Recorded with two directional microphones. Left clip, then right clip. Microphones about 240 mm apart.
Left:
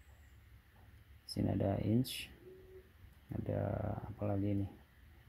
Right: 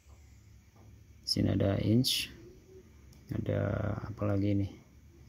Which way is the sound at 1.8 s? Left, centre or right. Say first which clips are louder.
Right 8 dB; centre.